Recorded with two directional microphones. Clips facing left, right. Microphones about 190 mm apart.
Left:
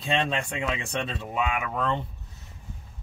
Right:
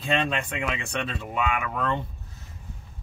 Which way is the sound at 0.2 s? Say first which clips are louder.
Even; 30° left (ahead or behind).